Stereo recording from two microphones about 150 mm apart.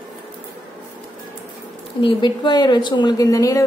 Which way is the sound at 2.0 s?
35° left (ahead or behind).